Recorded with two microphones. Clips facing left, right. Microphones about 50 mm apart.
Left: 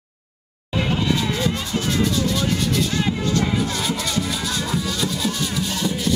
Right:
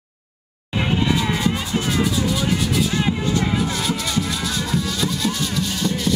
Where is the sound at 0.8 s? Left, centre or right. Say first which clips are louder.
Right 2 dB; centre.